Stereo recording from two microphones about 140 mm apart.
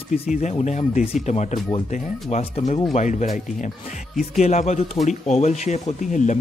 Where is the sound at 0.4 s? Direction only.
55° left (ahead or behind).